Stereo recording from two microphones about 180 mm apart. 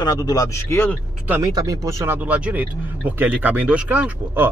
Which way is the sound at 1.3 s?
15° right (ahead or behind).